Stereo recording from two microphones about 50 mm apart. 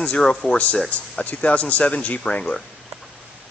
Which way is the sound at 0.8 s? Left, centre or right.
Left.